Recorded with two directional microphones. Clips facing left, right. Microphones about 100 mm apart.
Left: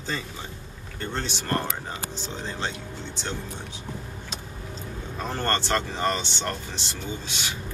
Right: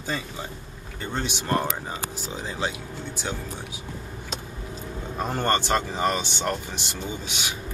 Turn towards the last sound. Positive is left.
turn(degrees=-15)  # may be behind; listen again after turning